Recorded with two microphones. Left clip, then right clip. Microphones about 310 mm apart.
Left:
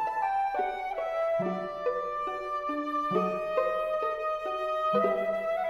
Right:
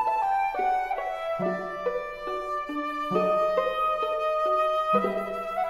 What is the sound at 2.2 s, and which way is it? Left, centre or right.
Music, centre.